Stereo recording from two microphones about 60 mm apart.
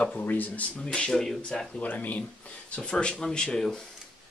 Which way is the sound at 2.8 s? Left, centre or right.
Centre.